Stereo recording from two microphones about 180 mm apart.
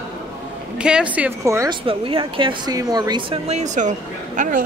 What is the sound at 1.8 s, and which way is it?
Speech, 30° right (ahead or behind).